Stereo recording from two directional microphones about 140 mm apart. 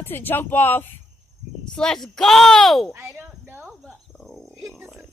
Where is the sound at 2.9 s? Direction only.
15° right (ahead or behind).